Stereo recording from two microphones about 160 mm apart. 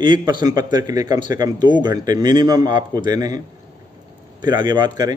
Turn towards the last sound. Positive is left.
turn(degrees=-25)  # may be behind; listen again after turning